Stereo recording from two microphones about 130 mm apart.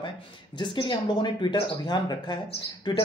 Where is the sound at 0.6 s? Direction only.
35° left (ahead or behind).